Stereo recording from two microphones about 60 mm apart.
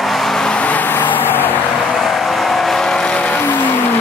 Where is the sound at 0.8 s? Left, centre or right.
Left.